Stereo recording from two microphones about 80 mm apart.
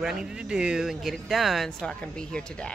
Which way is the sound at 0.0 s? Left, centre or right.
Centre.